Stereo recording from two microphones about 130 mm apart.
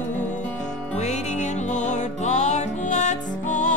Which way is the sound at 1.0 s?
65° left (ahead or behind).